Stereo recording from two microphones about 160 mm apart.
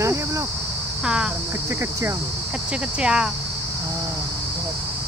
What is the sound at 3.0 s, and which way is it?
Speech, 5° right (ahead or behind).